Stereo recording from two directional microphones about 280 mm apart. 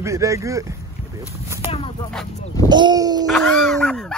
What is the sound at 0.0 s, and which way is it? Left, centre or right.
Speech, centre.